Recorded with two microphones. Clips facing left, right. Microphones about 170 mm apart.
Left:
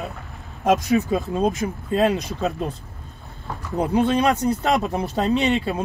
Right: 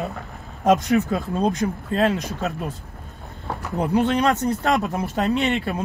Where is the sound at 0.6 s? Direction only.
10° left (ahead or behind).